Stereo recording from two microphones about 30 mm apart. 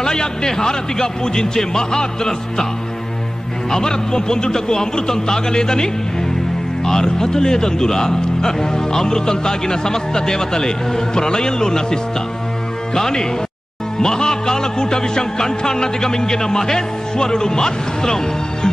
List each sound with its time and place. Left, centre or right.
0.0 s a man's voice: left
3.7 s a man's voice: left
6.9 s a man's voice: centre